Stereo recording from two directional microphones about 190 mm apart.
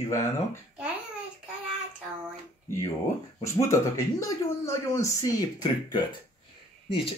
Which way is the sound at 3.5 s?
15° left (ahead or behind).